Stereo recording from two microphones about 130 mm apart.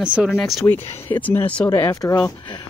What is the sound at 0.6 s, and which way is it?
Speech, 15° left (ahead or behind).